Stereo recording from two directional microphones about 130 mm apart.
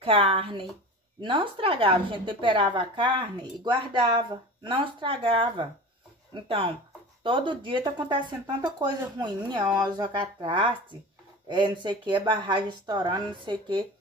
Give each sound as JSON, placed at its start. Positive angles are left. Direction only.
{"t": 0.0, "sound": "speech", "side_deg": -45}